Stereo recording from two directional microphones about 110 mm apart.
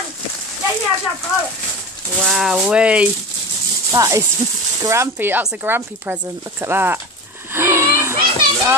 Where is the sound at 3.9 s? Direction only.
30° right (ahead or behind).